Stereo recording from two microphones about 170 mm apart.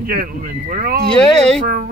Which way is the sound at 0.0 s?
60° right (ahead or behind).